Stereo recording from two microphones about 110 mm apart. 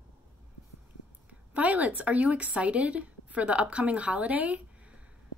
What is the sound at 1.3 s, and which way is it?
A woman's voice, 15° right (ahead or behind).